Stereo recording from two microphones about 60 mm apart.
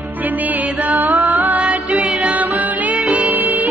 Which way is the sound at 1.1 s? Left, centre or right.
Centre.